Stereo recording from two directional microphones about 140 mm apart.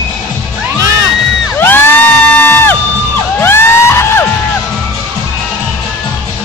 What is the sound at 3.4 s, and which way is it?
Music, 15° left (ahead or behind).